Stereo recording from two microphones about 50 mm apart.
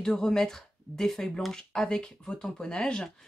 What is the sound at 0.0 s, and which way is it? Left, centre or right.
Speech, centre.